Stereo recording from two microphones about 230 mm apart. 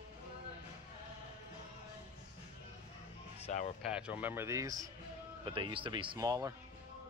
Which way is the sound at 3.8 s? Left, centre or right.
Centre.